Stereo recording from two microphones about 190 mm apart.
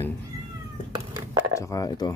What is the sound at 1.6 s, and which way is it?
Speech, 20° left (ahead or behind).